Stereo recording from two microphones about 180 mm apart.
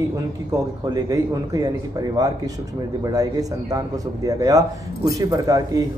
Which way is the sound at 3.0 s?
20° right (ahead or behind).